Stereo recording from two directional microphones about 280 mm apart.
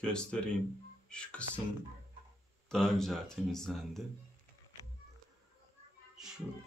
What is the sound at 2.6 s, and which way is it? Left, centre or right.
Speech, centre.